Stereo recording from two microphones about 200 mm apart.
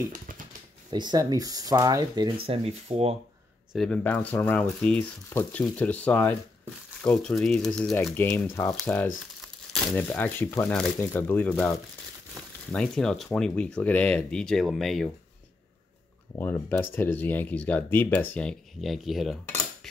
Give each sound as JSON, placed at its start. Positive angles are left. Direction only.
{"t": 0.8, "sound": "speech", "side_deg": -20}
{"t": 2.4, "sound": "speech", "side_deg": -30}
{"t": 3.7, "sound": "speech", "side_deg": 5}
{"t": 12.7, "sound": "speech", "side_deg": 5}
{"t": 16.3, "sound": "speech", "side_deg": 10}